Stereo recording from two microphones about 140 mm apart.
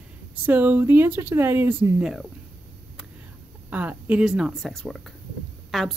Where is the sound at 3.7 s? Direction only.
10° right (ahead or behind).